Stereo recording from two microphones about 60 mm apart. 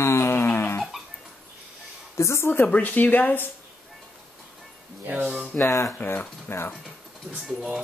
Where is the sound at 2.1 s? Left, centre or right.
Left.